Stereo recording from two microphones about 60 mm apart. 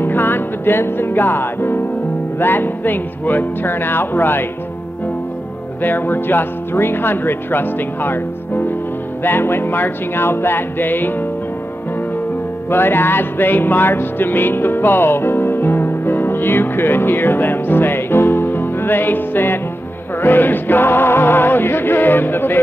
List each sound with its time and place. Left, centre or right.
0.0 s music: left
2.3 s speech: left
5.8 s speech: left
12.6 s music: left
20.2 s speech: left